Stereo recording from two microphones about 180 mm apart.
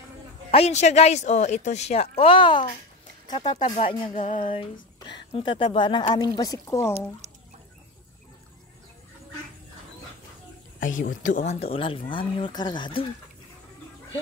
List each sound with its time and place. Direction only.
0.5 s speech: 35° left (ahead or behind)
3.4 s speech: 40° left (ahead or behind)
4.4 s speech: 30° left (ahead or behind)
7.2 s chicken: 40° right (ahead or behind)
11.2 s speech: 45° left (ahead or behind)
11.6 s speech: 30° left (ahead or behind)